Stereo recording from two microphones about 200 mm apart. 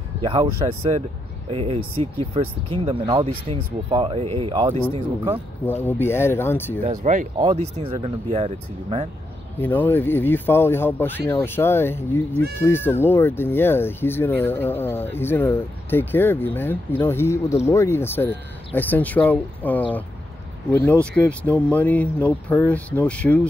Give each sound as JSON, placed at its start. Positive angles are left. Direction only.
{"t": 0.2, "sound": "speech", "side_deg": -25}
{"t": 5.7, "sound": "speech", "side_deg": 10}
{"t": 6.9, "sound": "speech", "side_deg": -40}
{"t": 9.6, "sound": "speech", "side_deg": 10}